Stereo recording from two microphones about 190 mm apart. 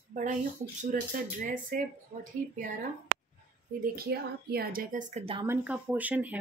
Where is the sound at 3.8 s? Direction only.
55° right (ahead or behind).